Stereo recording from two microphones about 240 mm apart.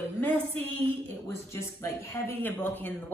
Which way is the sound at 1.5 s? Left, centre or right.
Centre.